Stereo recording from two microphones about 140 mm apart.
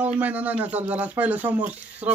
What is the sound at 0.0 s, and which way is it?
Speech, 10° right (ahead or behind).